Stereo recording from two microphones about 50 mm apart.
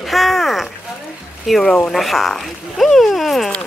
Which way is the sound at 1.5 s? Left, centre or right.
Centre.